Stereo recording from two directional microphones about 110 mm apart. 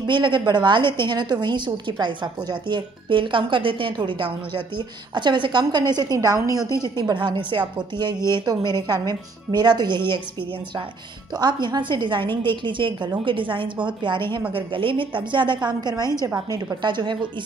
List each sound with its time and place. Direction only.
0.0 s a woman's voice: 45° right (ahead or behind)
11.3 s a woman's voice: 40° right (ahead or behind)